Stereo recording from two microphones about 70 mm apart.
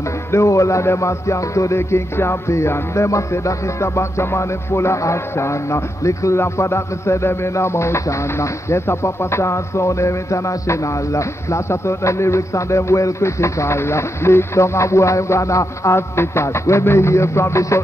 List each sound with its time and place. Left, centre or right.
0.3 s music: left